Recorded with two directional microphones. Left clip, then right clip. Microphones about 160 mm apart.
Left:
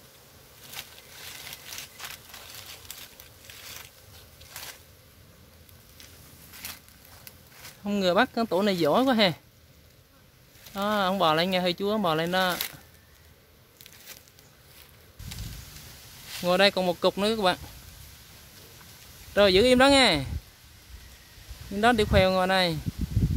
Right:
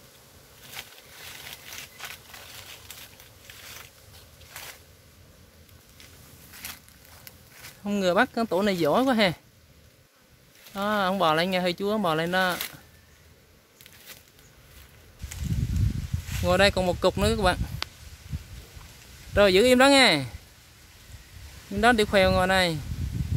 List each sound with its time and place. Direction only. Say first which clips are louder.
0.7 s a sound: even; 20° right (ahead or behind)
6.5 s a sound: right 1 dB; centre (ahead or behind)
7.2 s speech: right 1 dB; centre (ahead or behind)
10.7 s speech: even; centre (ahead or behind)
16.4 s speech: right 1 dB; 5° right (ahead or behind)
19.3 s speech: right 1 dB; 5° right (ahead or behind)
21.7 s speech: right 1 dB; 5° right (ahead or behind)